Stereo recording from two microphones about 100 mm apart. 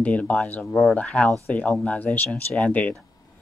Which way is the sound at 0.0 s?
15° left (ahead or behind).